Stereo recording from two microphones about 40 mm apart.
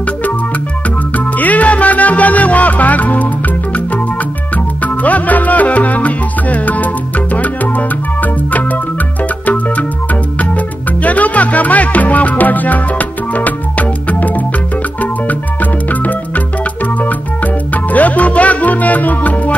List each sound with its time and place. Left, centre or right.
1.1 s music: left
11.0 s music: left